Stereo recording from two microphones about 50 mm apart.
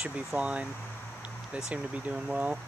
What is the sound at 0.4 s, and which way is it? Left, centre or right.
Speech, right.